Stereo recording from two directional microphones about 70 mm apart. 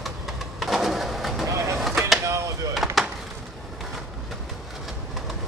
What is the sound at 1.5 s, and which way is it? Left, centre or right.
Vehicle, right.